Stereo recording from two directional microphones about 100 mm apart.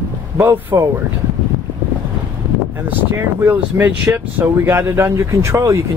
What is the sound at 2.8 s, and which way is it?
Speech, 20° right (ahead or behind).